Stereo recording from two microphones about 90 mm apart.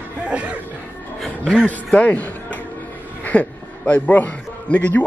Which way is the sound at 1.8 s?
15° left (ahead or behind).